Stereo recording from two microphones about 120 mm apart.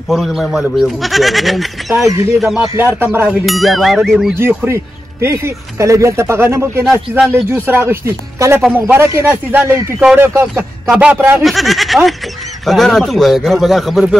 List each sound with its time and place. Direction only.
0.1 s a man's voice: centre (ahead or behind)
2.7 s speech: 20° right (ahead or behind)
3.4 s a man's voice: centre (ahead or behind)
4.4 s speech: 20° right (ahead or behind)
9.9 s speech: 5° right (ahead or behind)
10.2 s speech: 20° right (ahead or behind)
11.4 s a man's voice: centre (ahead or behind)